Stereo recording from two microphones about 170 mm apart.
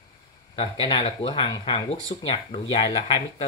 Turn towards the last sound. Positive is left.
turn(degrees=35)  # may be behind; listen again after turning